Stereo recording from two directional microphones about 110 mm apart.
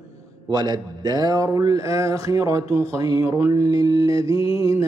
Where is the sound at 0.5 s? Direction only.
35° right (ahead or behind).